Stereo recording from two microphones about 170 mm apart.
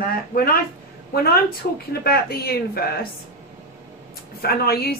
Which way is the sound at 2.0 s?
65° left (ahead or behind).